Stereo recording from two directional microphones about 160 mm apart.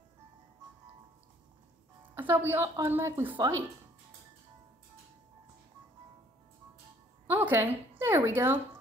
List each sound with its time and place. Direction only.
2.0 s a woman's voice: 15° right (ahead or behind)
7.2 s speech: 10° right (ahead or behind)